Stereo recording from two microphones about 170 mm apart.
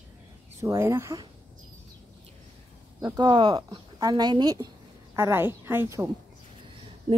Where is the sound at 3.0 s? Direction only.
20° right (ahead or behind).